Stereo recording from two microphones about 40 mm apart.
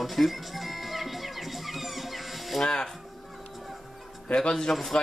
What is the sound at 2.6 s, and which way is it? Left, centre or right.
Speech, centre.